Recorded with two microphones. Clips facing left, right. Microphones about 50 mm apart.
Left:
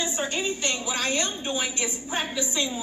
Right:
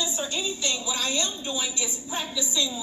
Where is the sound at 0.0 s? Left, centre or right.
Left.